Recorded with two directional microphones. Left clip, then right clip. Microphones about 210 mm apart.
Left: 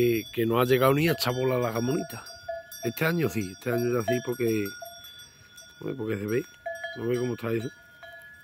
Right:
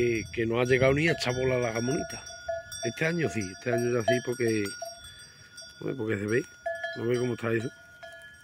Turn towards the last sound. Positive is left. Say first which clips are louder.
# right 1 dB
turn(degrees=5)  # may be behind; listen again after turning